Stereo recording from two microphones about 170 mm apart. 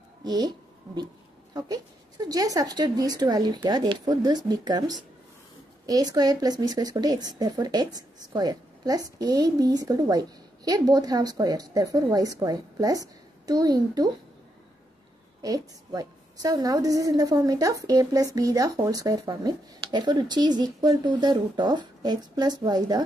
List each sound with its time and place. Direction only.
0.2 s a sound: 25° right (ahead or behind)
1.5 s a woman's voice: 20° right (ahead or behind)
15.4 s a woman's voice: 20° right (ahead or behind)